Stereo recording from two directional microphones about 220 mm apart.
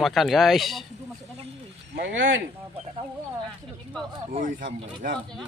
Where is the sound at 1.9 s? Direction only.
55° right (ahead or behind).